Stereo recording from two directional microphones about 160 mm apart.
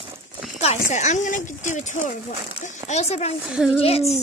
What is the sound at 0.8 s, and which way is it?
Speech, 50° left (ahead or behind).